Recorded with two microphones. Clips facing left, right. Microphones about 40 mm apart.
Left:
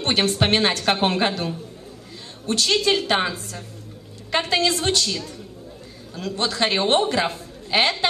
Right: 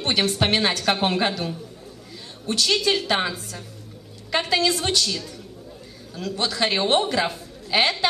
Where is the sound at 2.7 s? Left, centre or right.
Left.